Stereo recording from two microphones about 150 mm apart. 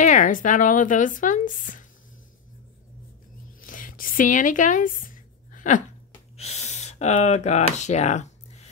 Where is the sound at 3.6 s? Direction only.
65° left (ahead or behind).